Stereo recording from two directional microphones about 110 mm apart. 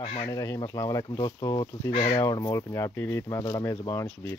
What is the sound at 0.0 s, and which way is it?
Speech, 65° left (ahead or behind).